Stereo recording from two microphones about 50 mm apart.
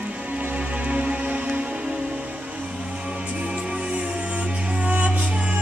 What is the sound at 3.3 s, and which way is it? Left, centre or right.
Music, right.